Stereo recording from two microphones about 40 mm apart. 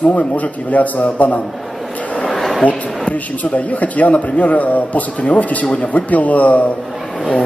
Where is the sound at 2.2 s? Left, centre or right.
Centre.